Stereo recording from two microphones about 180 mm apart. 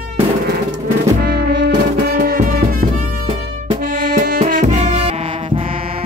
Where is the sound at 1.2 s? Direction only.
60° right (ahead or behind).